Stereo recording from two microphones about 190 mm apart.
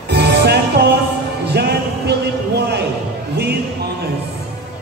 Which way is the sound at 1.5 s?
60° right (ahead or behind).